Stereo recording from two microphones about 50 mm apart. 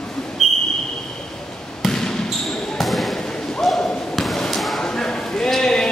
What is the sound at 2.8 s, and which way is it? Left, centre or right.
Basketball bounce, centre.